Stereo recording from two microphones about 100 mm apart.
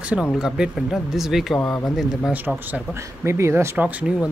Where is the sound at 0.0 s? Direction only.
10° right (ahead or behind).